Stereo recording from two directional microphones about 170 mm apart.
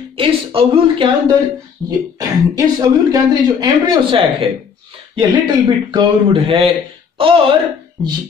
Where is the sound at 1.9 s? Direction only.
20° right (ahead or behind).